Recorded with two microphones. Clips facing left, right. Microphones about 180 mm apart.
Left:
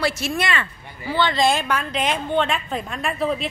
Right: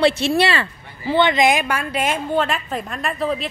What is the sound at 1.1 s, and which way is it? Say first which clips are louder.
Speech: right 3 dB; 20° right (ahead or behind).